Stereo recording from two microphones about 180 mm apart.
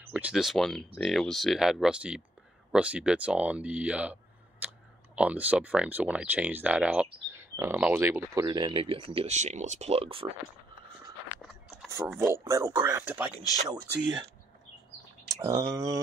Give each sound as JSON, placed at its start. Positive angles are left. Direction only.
{"t": 0.0, "sound": "speech", "side_deg": -10}
{"t": 11.4, "sound": "a sound", "side_deg": 0}
{"t": 12.2, "sound": "speech", "side_deg": -15}
{"t": 15.4, "sound": "speech", "side_deg": -20}